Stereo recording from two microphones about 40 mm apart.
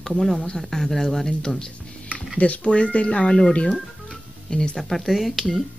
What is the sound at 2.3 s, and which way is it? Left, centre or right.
Speech, left.